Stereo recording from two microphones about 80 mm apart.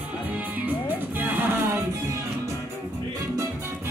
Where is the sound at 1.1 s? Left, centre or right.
Right.